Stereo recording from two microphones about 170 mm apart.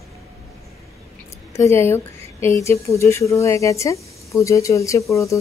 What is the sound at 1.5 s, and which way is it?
Speech, 15° left (ahead or behind).